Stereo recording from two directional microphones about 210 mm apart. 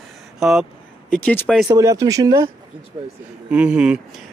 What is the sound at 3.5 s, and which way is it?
Speech, 5° right (ahead or behind).